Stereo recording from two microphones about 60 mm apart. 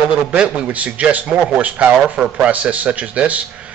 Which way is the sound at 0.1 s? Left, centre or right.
Centre.